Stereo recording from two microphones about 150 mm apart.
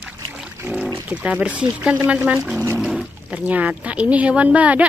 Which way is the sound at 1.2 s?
10° right (ahead or behind).